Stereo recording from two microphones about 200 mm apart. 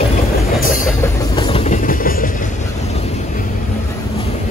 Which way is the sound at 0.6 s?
40° left (ahead or behind).